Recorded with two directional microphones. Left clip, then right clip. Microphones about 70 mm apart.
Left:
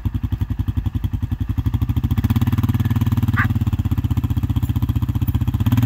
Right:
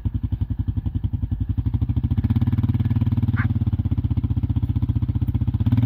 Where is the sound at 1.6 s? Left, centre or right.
Right.